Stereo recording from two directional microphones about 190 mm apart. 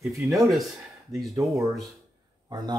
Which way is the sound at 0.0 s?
Centre (ahead or behind).